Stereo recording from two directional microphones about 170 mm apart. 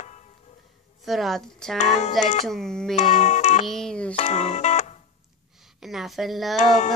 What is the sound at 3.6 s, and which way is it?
Music, 5° left (ahead or behind).